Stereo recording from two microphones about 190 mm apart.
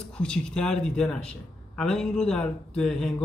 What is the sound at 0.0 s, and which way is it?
Speech, 5° left (ahead or behind).